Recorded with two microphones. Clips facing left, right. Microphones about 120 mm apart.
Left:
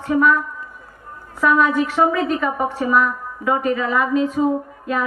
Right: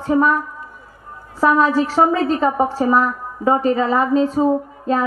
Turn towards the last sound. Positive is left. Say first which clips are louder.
# right 4 dB
turn(degrees=-30)  # may be behind; listen again after turning